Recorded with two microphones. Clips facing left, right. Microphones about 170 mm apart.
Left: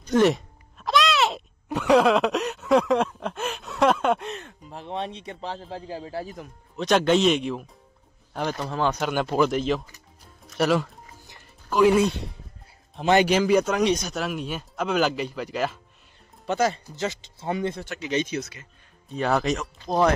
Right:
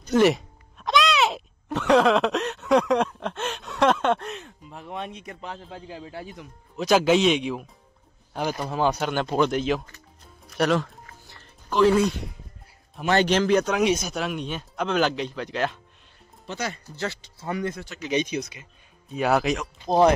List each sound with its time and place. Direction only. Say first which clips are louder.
0.1 s music: even; 5° right (ahead or behind)
1.7 s a sound: even; 10° left (ahead or behind)
4.6 s a man's voice: left 3 dB; 30° left (ahead or behind)
6.8 s speech: right 1 dB; 5° right (ahead or behind)
9.0 s speech: left 1 dB; 5° left (ahead or behind)
10.5 s music: even; 5° left (ahead or behind)
12.9 s a man's voice: left 3 dB; 25° left (ahead or behind)
13.2 s speech: left 1 dB; 10° left (ahead or behind)
13.7 s speech: even; 5° right (ahead or behind)
16.8 s speech: left 2 dB; 20° left (ahead or behind)
18.1 s speech: right 1 dB; 15° right (ahead or behind)